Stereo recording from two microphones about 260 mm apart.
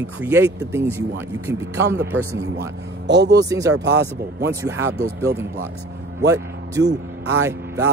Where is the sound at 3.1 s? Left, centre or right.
Right.